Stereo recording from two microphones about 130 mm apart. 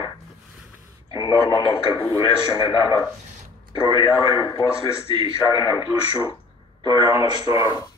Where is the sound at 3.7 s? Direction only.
30° left (ahead or behind).